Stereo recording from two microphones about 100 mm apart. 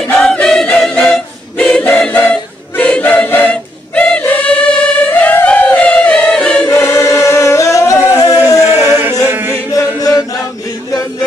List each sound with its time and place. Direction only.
0.0 s a capella: 5° left (ahead or behind)
6.7 s music: 25° left (ahead or behind)
8.1 s a sound: 35° left (ahead or behind)
8.5 s a sound: 25° right (ahead or behind)
9.2 s chant: 20° right (ahead or behind)
10.9 s music: 35° left (ahead or behind)